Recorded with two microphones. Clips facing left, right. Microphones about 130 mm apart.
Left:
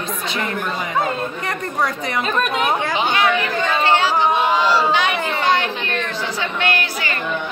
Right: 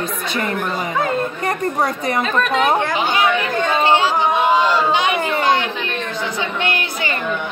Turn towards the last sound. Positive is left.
turn(degrees=-20)  # may be behind; listen again after turning